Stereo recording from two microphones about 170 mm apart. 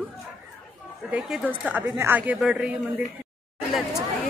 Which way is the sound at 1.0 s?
5° right (ahead or behind).